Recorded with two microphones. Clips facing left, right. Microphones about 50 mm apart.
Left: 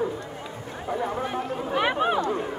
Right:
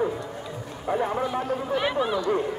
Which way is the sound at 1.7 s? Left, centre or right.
Left.